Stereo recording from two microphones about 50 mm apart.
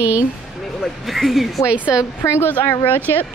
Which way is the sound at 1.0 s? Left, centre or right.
Centre.